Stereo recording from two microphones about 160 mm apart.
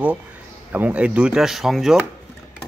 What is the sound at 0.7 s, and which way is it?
Speech, 10° right (ahead or behind).